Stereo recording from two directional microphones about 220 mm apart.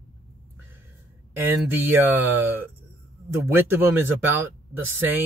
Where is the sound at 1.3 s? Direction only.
10° right (ahead or behind).